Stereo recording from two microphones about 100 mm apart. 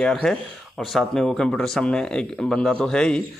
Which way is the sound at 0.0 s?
5° left (ahead or behind).